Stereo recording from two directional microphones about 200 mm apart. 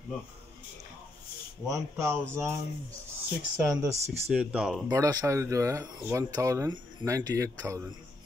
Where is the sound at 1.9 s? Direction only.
15° right (ahead or behind).